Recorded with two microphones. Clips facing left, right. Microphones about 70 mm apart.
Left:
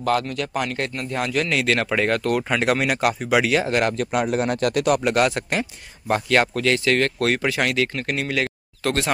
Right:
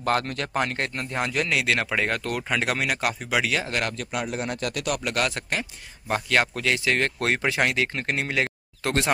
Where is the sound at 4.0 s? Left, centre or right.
Left.